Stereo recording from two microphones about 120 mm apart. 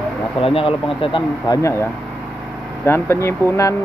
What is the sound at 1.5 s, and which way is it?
Speech, 25° left (ahead or behind).